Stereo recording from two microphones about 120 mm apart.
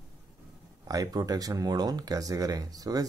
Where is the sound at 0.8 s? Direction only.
30° right (ahead or behind).